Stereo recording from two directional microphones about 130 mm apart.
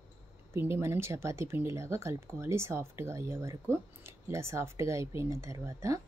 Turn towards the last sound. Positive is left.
turn(degrees=-25)  # may be behind; listen again after turning